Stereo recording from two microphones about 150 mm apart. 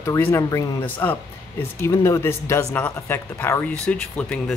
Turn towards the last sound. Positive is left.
turn(degrees=5)  # may be behind; listen again after turning